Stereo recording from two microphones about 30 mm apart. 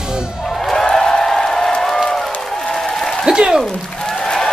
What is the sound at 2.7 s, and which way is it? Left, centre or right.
Applause, centre.